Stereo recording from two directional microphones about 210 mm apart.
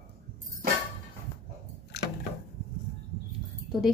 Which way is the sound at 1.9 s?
55° left (ahead or behind).